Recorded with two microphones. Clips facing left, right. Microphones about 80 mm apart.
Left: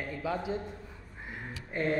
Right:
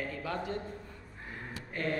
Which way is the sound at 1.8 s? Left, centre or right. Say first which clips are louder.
Left 4 dB; left.